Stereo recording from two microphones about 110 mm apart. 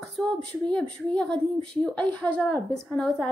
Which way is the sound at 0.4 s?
10° left (ahead or behind).